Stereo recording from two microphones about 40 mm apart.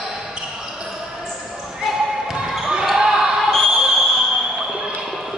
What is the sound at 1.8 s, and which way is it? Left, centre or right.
Basketball bounce, centre.